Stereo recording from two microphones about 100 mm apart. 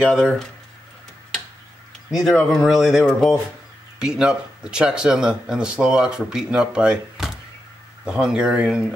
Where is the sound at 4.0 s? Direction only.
10° right (ahead or behind).